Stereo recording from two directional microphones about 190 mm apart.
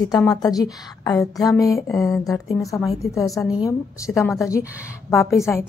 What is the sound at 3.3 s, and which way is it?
Speech, centre (ahead or behind).